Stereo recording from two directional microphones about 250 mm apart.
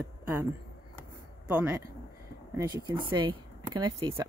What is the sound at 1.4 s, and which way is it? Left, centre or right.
Speech, centre.